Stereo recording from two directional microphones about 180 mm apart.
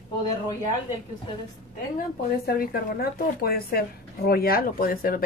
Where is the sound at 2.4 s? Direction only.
55° left (ahead or behind).